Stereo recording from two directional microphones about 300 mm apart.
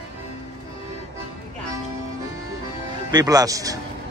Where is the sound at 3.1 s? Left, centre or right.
Centre.